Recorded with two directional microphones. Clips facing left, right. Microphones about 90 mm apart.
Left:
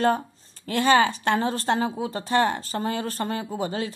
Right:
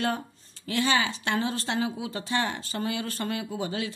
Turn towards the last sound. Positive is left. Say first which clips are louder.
# left 3 dB
turn(degrees=40)  # may be behind; listen again after turning